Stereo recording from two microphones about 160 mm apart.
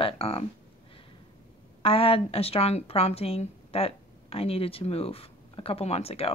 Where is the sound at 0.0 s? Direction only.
35° left (ahead or behind).